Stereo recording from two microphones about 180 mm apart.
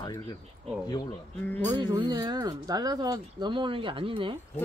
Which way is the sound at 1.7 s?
25° right (ahead or behind).